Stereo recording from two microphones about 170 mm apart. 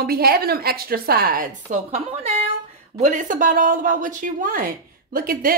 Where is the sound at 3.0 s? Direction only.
50° right (ahead or behind).